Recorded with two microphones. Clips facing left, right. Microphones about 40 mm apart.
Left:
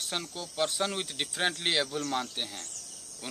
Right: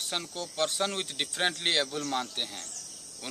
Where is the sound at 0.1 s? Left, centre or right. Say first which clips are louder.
Right 1 dB; centre.